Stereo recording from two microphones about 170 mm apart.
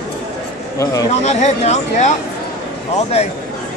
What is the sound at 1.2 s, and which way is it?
Speech, 40° left (ahead or behind).